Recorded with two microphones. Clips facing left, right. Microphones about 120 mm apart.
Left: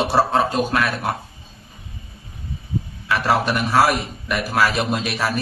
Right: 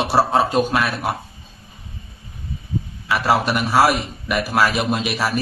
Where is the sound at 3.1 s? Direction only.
5° right (ahead or behind).